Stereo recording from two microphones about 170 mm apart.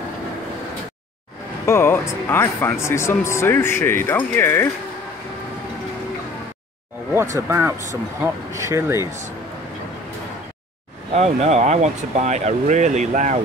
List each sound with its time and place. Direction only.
1.7 s speech: 15° left (ahead or behind)
7.3 s speech: 15° right (ahead or behind)
11.1 s speech: 40° right (ahead or behind)